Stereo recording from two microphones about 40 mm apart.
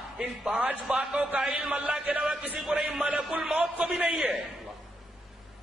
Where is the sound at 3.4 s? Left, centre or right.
Centre.